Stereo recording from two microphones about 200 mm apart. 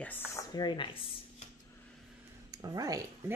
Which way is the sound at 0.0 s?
10° left (ahead or behind).